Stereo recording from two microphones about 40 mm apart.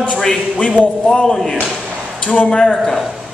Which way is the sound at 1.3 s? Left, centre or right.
Centre.